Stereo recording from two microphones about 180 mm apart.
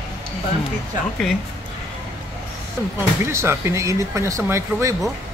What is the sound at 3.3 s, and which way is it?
Speech, 15° right (ahead or behind).